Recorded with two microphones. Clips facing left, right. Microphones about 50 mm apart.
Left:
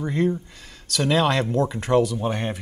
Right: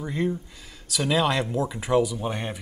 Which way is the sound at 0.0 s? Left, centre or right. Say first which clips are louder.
Left 4 dB; centre.